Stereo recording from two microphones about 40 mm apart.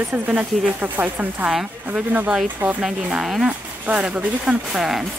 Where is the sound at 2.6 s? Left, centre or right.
Right.